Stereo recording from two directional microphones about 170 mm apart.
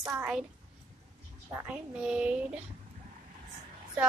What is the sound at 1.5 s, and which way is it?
A child's voice, 10° right (ahead or behind).